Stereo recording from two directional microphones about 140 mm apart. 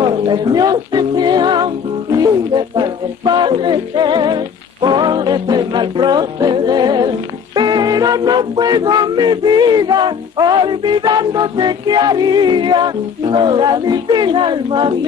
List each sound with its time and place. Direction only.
0.0 s speech: 30° right (ahead or behind)
2.1 s music: 30° right (ahead or behind)